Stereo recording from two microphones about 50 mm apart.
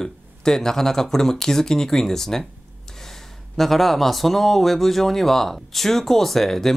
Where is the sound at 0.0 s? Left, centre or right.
Centre.